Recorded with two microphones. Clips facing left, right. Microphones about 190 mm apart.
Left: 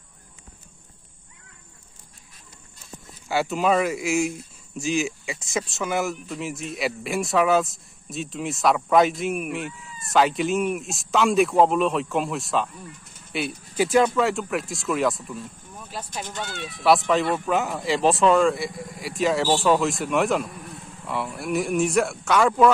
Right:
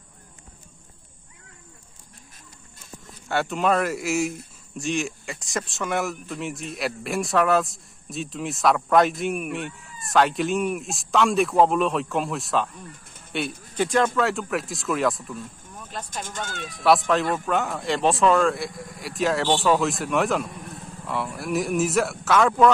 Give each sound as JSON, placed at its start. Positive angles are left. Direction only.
{"t": 3.3, "sound": "speech", "side_deg": 0}
{"t": 16.3, "sound": "speech", "side_deg": -45}
{"t": 16.8, "sound": "speech", "side_deg": 0}